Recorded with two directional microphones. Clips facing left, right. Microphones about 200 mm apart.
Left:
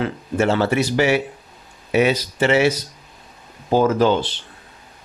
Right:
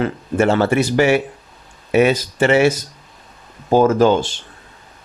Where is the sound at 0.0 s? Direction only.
50° right (ahead or behind).